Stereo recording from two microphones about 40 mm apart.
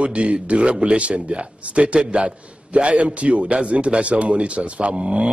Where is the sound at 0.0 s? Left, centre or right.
Right.